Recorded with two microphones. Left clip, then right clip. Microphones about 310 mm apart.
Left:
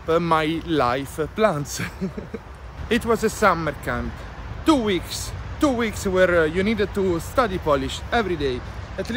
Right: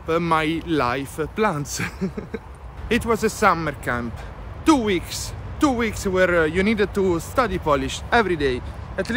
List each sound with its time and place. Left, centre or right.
0.0 s speech: centre